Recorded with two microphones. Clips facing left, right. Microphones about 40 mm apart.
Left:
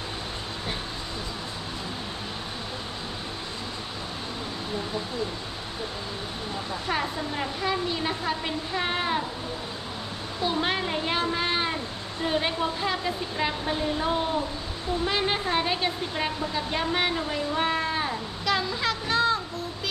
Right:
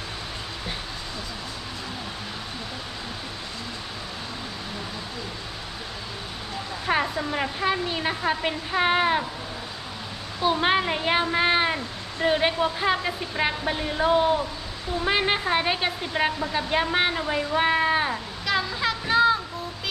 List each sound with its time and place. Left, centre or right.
6.9 s a woman's voice: right
10.4 s a woman's voice: right
18.4 s a sound: centre